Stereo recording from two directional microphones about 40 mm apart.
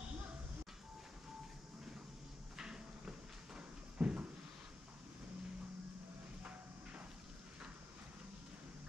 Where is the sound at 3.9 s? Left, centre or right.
Right.